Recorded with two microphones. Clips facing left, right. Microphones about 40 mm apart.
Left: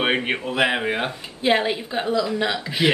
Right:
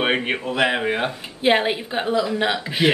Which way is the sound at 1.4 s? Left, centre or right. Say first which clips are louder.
Right 2 dB; centre.